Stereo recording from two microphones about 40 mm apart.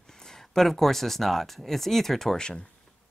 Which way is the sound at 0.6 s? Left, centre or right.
Centre.